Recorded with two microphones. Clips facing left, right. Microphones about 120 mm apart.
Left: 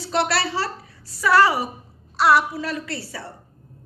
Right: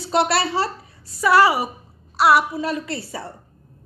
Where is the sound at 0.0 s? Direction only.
20° right (ahead or behind).